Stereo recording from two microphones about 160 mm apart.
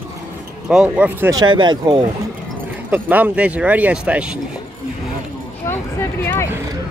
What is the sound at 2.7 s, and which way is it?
Speech, 10° right (ahead or behind).